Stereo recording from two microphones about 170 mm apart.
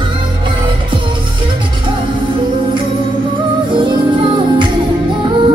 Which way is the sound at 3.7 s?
30° right (ahead or behind).